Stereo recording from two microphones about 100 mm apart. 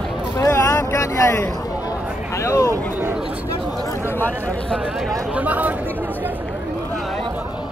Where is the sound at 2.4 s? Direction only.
30° left (ahead or behind).